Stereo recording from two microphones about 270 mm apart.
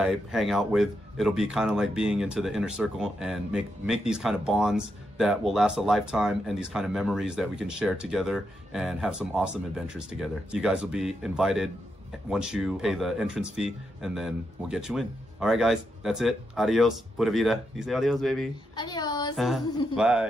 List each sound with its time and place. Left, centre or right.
0.0 s speech: centre
18.8 s a sound: centre
19.3 s speech: centre